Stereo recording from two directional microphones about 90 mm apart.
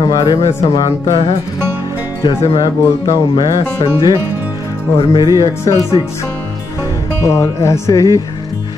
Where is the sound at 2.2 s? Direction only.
60° left (ahead or behind).